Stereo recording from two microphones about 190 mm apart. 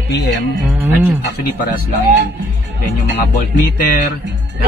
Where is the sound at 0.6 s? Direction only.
10° right (ahead or behind).